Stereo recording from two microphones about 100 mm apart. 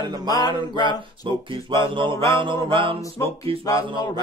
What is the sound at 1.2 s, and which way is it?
Speech, 55° right (ahead or behind).